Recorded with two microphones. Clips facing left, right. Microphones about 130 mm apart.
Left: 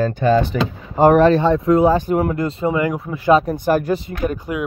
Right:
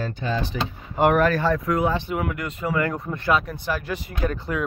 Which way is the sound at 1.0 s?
30° left (ahead or behind).